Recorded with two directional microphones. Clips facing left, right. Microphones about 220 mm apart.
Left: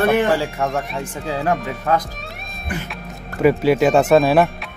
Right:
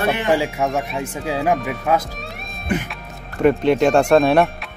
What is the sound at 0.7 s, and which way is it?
Speech, centre (ahead or behind).